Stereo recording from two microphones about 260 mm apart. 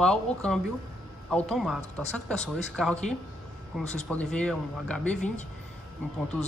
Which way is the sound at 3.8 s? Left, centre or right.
Left.